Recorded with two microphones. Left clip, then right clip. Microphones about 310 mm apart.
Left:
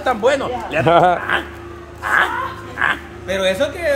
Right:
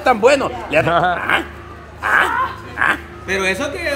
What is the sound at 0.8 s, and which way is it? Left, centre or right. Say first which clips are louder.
Speech: left 8 dB; centre.